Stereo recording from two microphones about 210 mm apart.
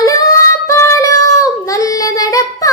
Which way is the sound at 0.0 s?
15° left (ahead or behind).